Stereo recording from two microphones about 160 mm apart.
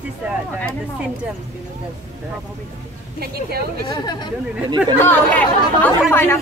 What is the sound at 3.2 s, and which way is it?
Speech, 75° right (ahead or behind).